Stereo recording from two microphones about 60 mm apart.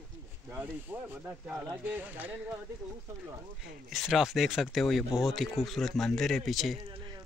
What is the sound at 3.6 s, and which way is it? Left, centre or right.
Speech, centre.